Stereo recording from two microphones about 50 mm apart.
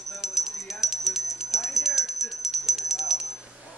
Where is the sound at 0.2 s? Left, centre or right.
Centre.